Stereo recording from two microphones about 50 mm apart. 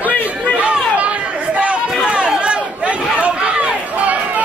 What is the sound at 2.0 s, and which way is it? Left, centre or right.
Run, right.